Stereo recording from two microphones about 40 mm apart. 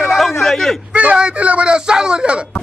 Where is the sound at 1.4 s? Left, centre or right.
Right.